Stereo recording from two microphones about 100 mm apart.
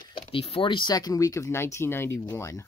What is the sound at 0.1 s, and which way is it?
Speech, 65° left (ahead or behind).